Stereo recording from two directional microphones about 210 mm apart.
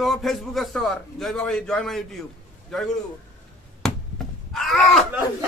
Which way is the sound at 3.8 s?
Centre (ahead or behind).